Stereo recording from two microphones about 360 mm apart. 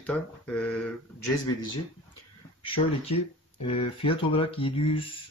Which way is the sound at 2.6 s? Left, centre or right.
Centre.